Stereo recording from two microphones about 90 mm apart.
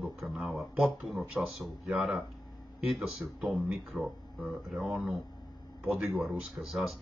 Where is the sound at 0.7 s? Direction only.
10° right (ahead or behind).